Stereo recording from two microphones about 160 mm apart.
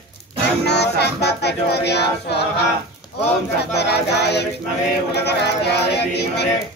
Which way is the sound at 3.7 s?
90° left.